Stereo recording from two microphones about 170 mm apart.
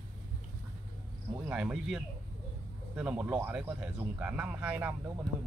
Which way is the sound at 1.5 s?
5° right (ahead or behind).